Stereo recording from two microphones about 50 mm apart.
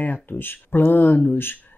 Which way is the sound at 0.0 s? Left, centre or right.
Left.